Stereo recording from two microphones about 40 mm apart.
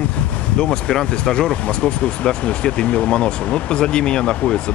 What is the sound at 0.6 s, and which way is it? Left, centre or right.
Speech, centre.